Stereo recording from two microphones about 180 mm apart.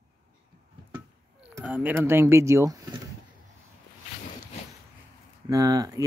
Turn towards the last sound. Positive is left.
turn(degrees=-20)  # may be behind; listen again after turning